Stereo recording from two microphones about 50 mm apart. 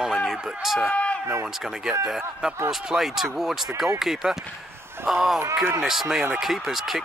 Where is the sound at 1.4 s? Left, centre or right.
Centre.